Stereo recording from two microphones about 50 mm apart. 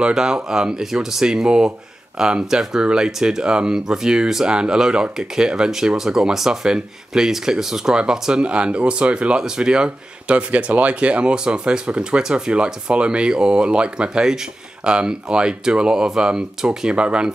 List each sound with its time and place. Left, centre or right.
0.0 s speech: centre
9.8 s speech: right